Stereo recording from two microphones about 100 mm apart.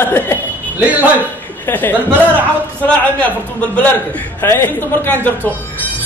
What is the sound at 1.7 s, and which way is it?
Speech, 20° left (ahead or behind).